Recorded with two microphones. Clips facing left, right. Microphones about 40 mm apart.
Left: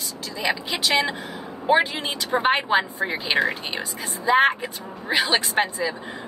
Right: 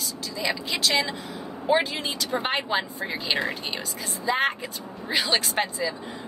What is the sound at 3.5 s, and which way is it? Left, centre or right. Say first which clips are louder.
A woman's voice: left 3 dB; left.